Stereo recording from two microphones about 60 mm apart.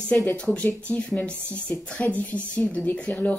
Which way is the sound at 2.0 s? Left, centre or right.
Centre.